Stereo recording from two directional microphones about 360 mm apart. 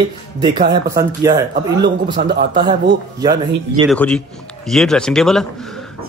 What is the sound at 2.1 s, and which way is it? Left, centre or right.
Speech, right.